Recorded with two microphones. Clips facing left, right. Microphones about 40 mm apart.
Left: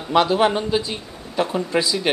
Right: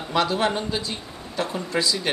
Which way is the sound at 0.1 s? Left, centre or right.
Left.